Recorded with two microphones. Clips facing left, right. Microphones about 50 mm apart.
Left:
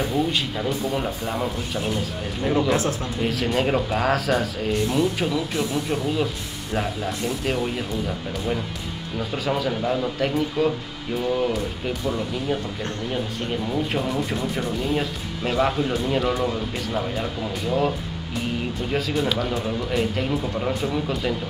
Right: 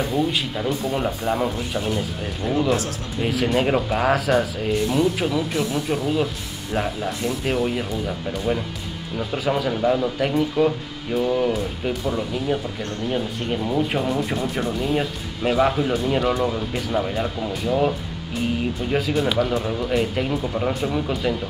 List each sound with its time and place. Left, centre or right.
0.0 s speech: centre
2.7 s speech: left
3.2 s speech: centre
9.3 s speech: centre